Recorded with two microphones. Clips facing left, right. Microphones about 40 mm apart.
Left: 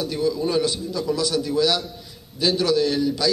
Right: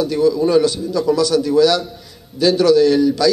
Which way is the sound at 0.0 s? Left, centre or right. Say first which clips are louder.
Right 8 dB; centre.